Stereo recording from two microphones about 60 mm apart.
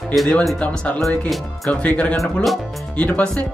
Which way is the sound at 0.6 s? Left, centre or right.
Left.